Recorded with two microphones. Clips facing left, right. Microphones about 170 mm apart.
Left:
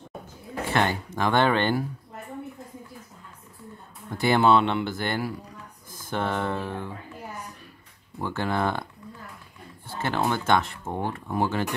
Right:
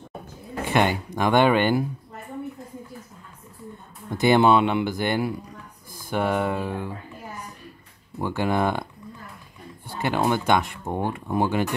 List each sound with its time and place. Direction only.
0.7 s speech: 15° right (ahead or behind)
4.2 s speech: 15° right (ahead or behind)
8.2 s speech: 15° right (ahead or behind)
9.8 s speech: 15° right (ahead or behind)